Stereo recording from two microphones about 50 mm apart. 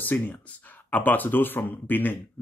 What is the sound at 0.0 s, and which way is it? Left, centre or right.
Speech, left.